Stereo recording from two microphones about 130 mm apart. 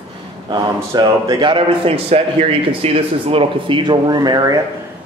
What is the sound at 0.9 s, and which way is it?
Speech, 35° right (ahead or behind).